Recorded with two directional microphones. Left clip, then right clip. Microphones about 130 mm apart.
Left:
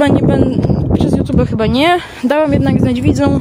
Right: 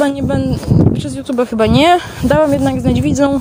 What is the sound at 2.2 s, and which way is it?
Speech, 40° left (ahead or behind).